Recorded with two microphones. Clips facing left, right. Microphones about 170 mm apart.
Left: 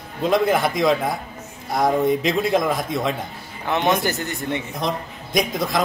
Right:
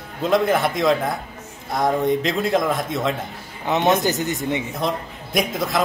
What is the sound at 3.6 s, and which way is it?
Speech, 20° right (ahead or behind).